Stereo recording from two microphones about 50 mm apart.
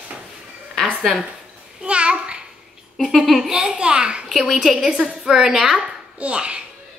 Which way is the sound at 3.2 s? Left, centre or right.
Centre.